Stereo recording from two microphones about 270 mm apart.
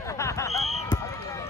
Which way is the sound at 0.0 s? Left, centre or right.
Centre.